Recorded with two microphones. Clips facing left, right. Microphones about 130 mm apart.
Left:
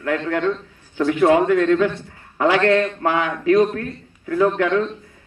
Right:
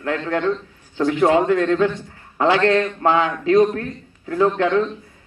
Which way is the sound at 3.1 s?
25° right (ahead or behind).